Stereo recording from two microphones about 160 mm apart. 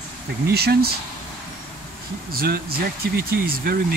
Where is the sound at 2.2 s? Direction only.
70° right (ahead or behind).